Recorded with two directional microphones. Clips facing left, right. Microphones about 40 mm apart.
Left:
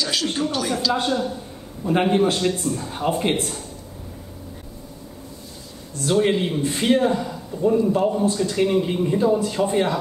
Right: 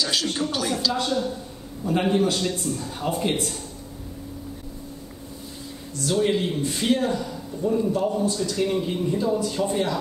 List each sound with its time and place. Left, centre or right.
0.0 s a sound: centre
0.5 s speech: centre
0.9 s a man's voice: left
6.0 s a man's voice: left